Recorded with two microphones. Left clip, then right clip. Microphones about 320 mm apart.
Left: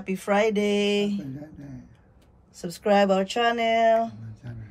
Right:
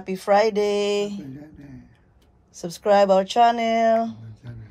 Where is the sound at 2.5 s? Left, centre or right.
Right.